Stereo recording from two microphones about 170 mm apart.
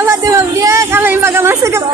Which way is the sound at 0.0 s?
15° right (ahead or behind).